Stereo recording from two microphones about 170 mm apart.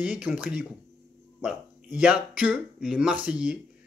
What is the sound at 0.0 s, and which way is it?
Speech, 5° right (ahead or behind).